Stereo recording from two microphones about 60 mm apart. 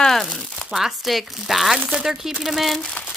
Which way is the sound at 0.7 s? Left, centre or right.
Centre.